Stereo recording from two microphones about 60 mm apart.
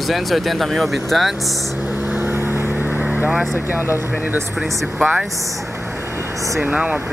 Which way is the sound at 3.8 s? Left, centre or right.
Right.